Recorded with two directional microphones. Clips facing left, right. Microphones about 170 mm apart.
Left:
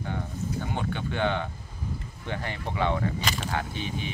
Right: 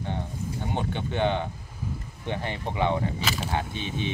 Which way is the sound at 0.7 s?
20° right (ahead or behind).